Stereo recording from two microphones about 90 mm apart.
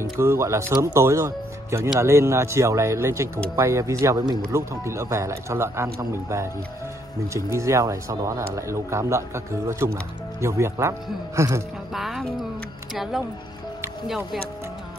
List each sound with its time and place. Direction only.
0.2 s a man's voice: 30° right (ahead or behind)
7.5 s a man's voice: 35° right (ahead or behind)
11.9 s speech: centre (ahead or behind)